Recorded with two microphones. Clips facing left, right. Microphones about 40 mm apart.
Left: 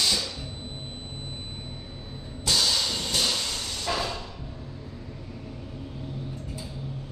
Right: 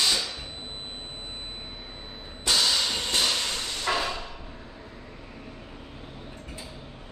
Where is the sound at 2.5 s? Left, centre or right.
Right.